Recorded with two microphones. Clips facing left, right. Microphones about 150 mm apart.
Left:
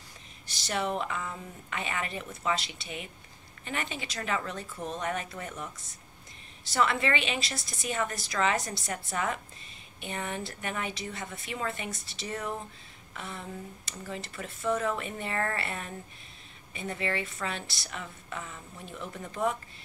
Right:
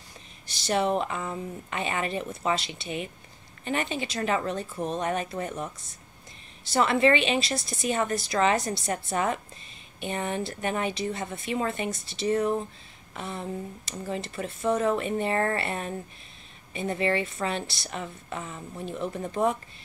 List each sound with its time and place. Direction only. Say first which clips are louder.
0.7 s speech: right 6 dB; 30° right (ahead or behind)
6.7 s a woman's voice: right 6 dB; 30° right (ahead or behind)